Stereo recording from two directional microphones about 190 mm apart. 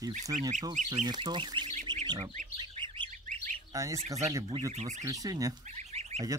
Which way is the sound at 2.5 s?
25° right (ahead or behind).